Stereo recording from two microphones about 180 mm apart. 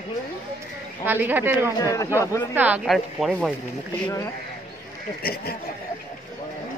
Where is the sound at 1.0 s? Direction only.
10° right (ahead or behind).